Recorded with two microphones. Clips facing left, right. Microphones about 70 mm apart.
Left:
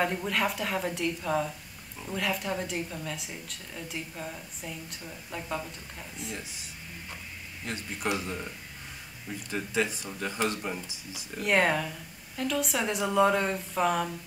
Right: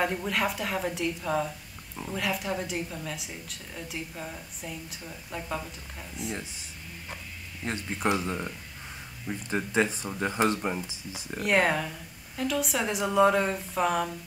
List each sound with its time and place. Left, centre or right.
0.0 s a woman's voice: centre
7.6 s speech: right
11.3 s a woman's voice: centre